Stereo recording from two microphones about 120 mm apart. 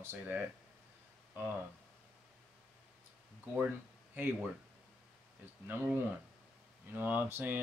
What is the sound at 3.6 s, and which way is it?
Speech, 15° right (ahead or behind).